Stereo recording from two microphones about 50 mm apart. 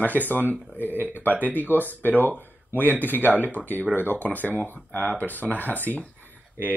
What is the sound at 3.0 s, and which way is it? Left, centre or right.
Speech, left.